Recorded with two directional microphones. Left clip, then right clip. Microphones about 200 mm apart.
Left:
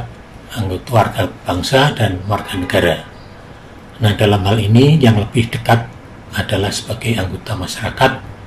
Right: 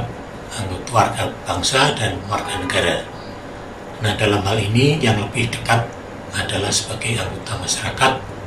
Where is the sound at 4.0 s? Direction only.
40° left (ahead or behind).